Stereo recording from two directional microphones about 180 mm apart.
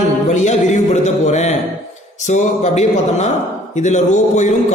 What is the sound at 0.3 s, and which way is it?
Music, 40° left (ahead or behind).